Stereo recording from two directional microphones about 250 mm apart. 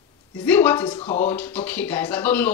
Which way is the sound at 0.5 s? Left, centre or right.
Centre.